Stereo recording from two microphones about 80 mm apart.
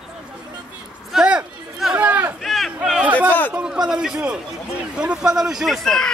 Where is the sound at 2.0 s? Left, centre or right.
Right.